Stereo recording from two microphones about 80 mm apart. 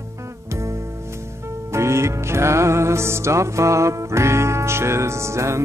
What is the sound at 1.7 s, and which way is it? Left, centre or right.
Music, right.